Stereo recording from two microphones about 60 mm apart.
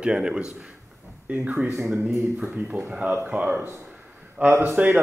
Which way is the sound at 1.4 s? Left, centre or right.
Right.